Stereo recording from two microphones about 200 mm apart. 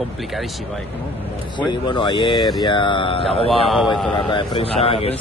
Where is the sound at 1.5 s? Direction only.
25° left (ahead or behind).